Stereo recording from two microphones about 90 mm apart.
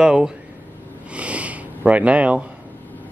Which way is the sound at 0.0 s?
10° right (ahead or behind).